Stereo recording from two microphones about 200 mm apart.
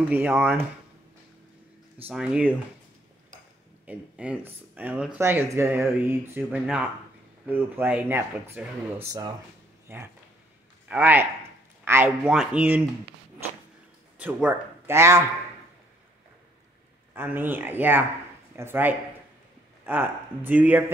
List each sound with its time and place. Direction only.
0.1 s speech: 10° right (ahead or behind)
2.0 s speech: 5° right (ahead or behind)
3.8 s speech: 5° right (ahead or behind)
14.1 s a man's voice: 10° right (ahead or behind)
17.1 s speech: 10° right (ahead or behind)